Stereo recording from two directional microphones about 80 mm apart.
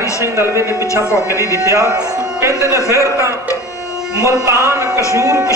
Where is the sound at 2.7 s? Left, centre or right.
Left.